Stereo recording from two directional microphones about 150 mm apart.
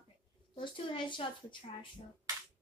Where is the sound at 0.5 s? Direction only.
35° left (ahead or behind).